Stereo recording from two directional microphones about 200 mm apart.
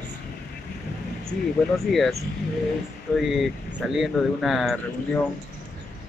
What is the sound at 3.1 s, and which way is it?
Speech, 10° left (ahead or behind).